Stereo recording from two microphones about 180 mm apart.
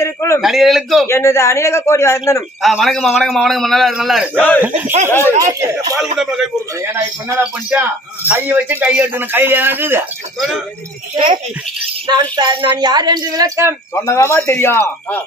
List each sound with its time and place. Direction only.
0.0 s a sound: 15° left (ahead or behind)
0.4 s a man's voice: centre (ahead or behind)
1.0 s speech: 15° left (ahead or behind)
2.6 s a man's voice: centre (ahead or behind)
4.6 s speech: 10° right (ahead or behind)
6.1 s a man's voice: 5° right (ahead or behind)
12.1 s speech: 20° right (ahead or behind)
13.9 s speech: 15° left (ahead or behind)